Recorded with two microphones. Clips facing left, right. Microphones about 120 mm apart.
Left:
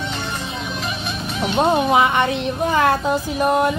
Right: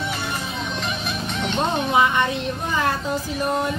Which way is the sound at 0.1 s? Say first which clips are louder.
Left 1 dB; centre (ahead or behind).